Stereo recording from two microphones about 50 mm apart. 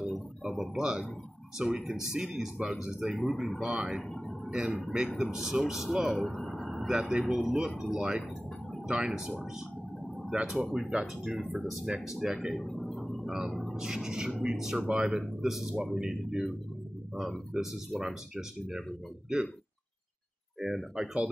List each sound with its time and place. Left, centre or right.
0.4 s a man's voice: centre
3.2 s speech: centre
3.6 s a man's voice: centre
6.2 s vehicle: centre
6.9 s a man's voice: centre
10.3 s a man's voice: centre
11.3 s speech: centre
12.5 s a sound: centre
13.3 s speech: centre
13.7 s a man's voice: centre
17.6 s a man's voice: centre
20.6 s speech: centre